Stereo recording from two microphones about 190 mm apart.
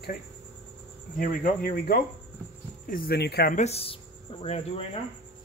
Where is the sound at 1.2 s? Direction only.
50° left (ahead or behind).